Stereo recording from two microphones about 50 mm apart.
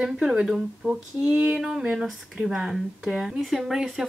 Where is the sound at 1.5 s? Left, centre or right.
Centre.